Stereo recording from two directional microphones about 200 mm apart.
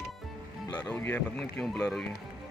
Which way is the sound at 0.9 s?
10° left (ahead or behind).